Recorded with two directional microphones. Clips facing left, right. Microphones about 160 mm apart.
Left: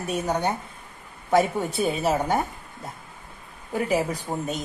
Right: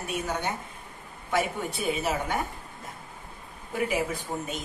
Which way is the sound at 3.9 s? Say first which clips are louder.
Left 4 dB; 40° left (ahead or behind).